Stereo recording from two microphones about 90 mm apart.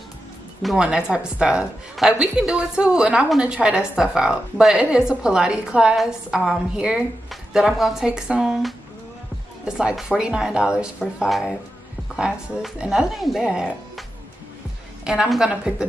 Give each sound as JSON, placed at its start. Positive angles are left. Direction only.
{"t": 0.6, "sound": "a woman's voice", "side_deg": 0}
{"t": 0.8, "sound": "a woman's voice", "side_deg": -10}
{"t": 15.0, "sound": "a woman's voice", "side_deg": -5}